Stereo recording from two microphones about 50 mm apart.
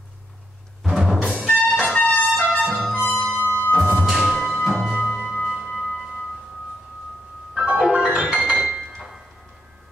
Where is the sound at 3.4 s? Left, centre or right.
Left.